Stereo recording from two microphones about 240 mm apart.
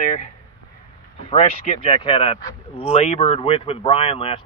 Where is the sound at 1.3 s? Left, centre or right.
Left.